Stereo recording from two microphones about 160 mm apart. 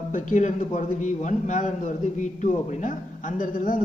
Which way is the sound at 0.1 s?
50° left (ahead or behind).